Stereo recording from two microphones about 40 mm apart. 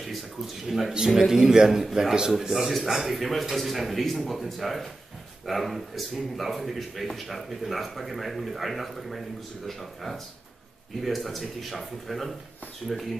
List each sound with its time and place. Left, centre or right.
0.7 s speech: centre
0.9 s speech: centre
11.0 s speech: centre